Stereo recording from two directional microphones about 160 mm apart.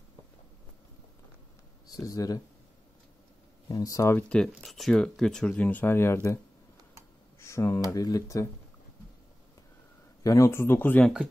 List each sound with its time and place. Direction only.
2.0 s speech: 20° left (ahead or behind)
3.6 s a man's voice: 25° left (ahead or behind)
7.3 s a sound: 15° left (ahead or behind)
7.9 s speech: 20° left (ahead or behind)
10.2 s a man's voice: 20° left (ahead or behind)